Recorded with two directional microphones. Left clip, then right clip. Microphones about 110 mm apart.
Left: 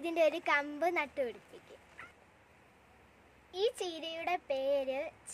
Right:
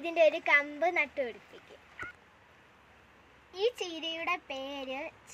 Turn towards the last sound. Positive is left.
turn(degrees=30)  # may be behind; listen again after turning